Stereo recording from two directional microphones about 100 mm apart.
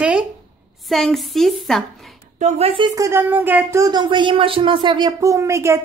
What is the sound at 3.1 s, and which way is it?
Speech, 20° right (ahead or behind).